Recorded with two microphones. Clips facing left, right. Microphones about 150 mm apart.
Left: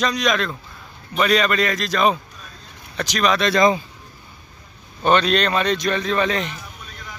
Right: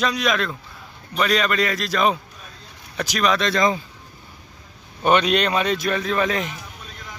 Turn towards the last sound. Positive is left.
turn(degrees=-5)  # may be behind; listen again after turning